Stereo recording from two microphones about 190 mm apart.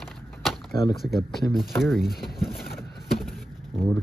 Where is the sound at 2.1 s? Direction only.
55° left (ahead or behind).